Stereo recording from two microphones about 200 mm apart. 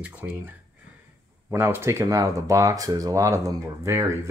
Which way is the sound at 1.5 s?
10° right (ahead or behind).